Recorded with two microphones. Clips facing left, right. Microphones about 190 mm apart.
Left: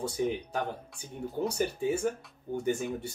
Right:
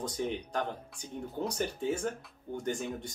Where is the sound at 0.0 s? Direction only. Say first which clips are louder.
Left 4 dB; 5° left (ahead or behind).